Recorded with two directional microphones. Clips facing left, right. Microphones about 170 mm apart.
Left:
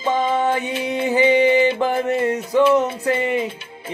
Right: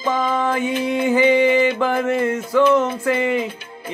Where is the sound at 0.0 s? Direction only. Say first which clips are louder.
Left 1 dB; 30° left (ahead or behind).